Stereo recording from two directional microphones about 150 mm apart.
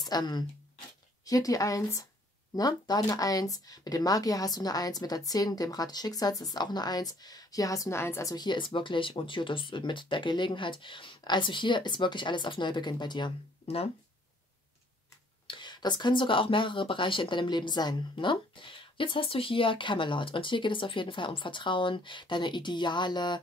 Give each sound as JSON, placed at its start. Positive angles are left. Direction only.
{"t": 0.0, "sound": "speech", "side_deg": 30}
{"t": 15.4, "sound": "speech", "side_deg": 30}